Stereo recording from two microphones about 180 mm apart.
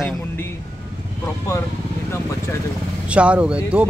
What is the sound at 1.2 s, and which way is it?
Speech, 15° left (ahead or behind).